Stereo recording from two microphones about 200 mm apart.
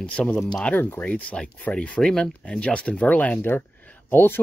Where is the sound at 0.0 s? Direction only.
5° left (ahead or behind).